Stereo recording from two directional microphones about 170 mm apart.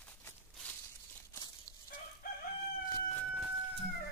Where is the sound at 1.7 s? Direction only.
25° left (ahead or behind).